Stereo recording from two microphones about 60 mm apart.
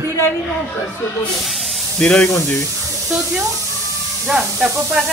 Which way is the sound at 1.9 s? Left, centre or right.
Left.